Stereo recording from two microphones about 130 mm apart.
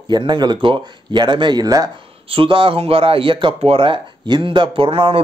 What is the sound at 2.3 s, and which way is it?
Speech, 40° right (ahead or behind).